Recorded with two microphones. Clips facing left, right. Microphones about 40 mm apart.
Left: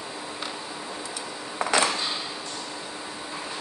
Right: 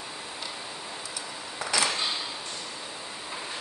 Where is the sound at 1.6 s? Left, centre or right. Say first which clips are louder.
Left 5 dB; left.